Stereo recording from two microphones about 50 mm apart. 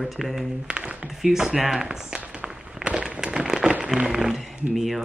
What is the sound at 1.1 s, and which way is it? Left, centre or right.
Speech, centre.